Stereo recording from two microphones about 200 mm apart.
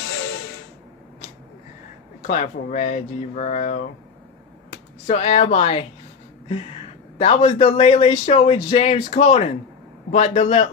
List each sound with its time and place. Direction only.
2.2 s a man's voice: 35° left (ahead or behind)
5.0 s a man's voice: 30° left (ahead or behind)
7.2 s a man's voice: 30° left (ahead or behind)